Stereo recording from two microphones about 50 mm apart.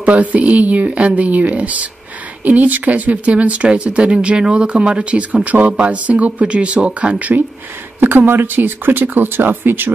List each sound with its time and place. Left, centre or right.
0.0 s speech: right
8.3 s speech: right